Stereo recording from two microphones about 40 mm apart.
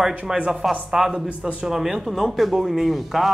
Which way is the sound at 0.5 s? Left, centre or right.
Centre.